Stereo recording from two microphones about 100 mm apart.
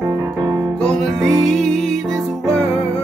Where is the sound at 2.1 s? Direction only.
30° right (ahead or behind).